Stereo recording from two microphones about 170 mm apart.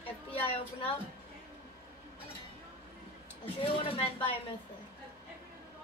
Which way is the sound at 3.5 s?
30° left (ahead or behind).